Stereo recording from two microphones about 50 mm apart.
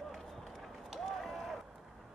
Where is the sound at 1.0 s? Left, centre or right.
Centre.